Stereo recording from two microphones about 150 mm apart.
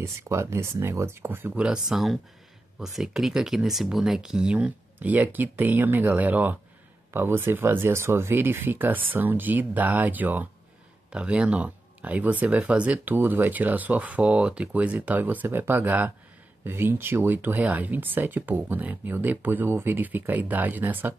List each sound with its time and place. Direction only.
0.0 s speech: 20° right (ahead or behind)
1.5 s speech: 5° right (ahead or behind)